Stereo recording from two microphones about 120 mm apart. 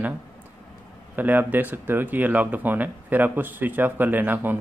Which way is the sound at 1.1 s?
15° right (ahead or behind).